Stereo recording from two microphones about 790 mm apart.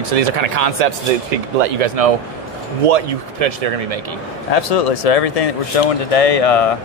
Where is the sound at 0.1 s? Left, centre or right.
Right.